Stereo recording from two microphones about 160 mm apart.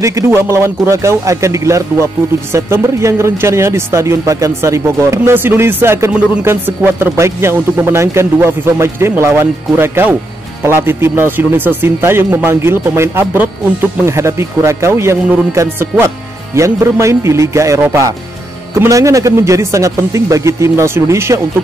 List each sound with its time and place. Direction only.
0.0 s speech: 20° right (ahead or behind)